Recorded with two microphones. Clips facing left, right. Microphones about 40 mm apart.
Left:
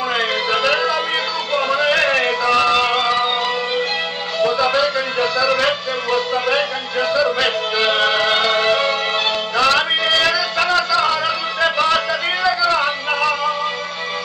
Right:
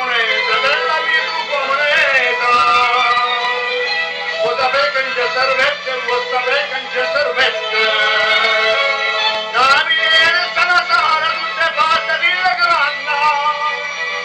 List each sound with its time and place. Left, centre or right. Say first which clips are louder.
0.1 s music: right 4 dB; right
4.5 s music: right 1 dB; right
4.7 s music: right 2 dB; right
7.2 s music: right 3 dB; right
7.9 s music: right 2 dB; right
9.6 s music: right 4 dB; right
9.9 s a sound: right 4 dB; right
11.0 s music: right 3 dB; right